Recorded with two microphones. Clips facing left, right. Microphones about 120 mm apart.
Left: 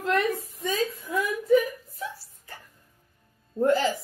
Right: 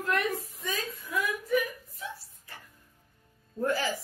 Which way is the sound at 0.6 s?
30° left (ahead or behind).